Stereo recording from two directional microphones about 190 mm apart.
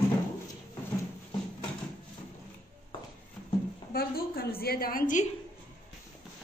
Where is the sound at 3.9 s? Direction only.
55° left (ahead or behind).